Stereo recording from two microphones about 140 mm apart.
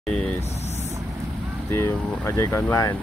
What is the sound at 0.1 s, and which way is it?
Speech, 5° left (ahead or behind).